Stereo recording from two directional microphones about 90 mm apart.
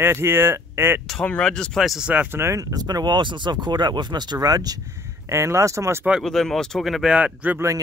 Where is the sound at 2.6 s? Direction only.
45° right (ahead or behind).